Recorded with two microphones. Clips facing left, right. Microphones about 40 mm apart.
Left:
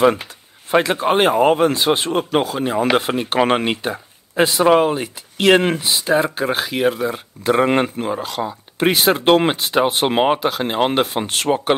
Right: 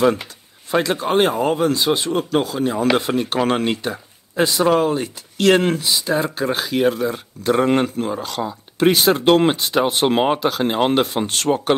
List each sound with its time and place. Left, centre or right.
0.0 s speech: left